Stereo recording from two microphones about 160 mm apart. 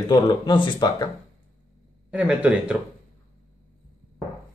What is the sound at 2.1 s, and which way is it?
Speech, 10° right (ahead or behind).